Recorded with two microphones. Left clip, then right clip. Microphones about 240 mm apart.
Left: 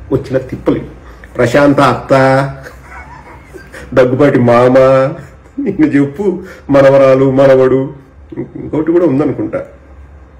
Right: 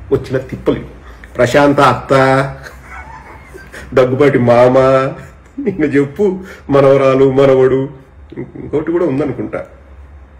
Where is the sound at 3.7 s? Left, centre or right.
Centre.